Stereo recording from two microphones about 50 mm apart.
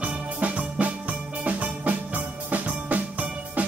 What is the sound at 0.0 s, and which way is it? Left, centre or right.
Music, right.